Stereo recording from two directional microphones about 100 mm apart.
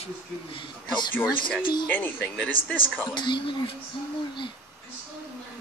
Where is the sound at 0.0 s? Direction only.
60° left (ahead or behind).